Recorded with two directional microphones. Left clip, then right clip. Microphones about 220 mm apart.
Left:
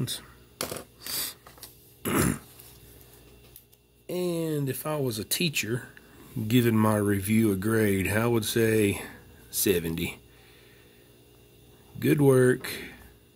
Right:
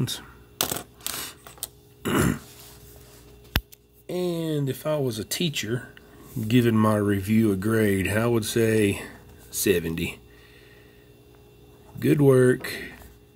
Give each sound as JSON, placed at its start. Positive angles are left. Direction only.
{"t": 0.0, "sound": "speech", "side_deg": 0}
{"t": 2.0, "sound": "burping", "side_deg": 10}
{"t": 4.1, "sound": "speech", "side_deg": 15}
{"t": 12.0, "sound": "speech", "side_deg": 15}